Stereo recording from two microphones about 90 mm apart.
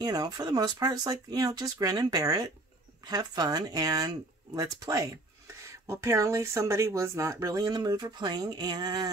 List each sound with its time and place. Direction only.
0.0 s speech: 45° right (ahead or behind)